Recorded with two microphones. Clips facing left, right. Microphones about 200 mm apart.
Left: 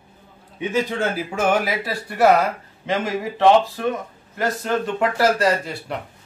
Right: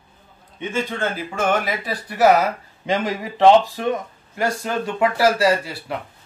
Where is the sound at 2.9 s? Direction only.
15° right (ahead or behind).